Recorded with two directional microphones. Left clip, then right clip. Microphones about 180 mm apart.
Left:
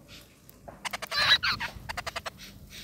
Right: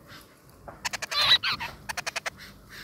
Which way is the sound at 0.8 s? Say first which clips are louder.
Right 3 dB; 15° right (ahead or behind).